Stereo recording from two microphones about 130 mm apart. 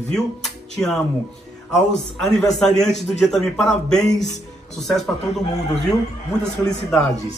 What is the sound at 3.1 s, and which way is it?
Speech, centre (ahead or behind).